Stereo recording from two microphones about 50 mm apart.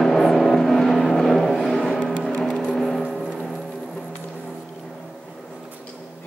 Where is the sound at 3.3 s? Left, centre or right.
Centre.